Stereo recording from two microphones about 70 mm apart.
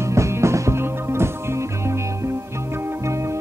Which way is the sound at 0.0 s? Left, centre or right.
Right.